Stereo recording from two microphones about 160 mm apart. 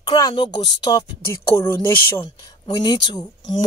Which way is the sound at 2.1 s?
25° left (ahead or behind).